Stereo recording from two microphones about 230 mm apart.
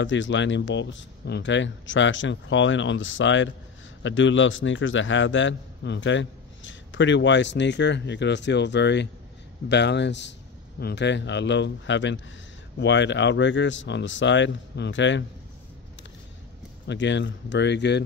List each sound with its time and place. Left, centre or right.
0.0 s a man's voice: left
16.8 s a man's voice: left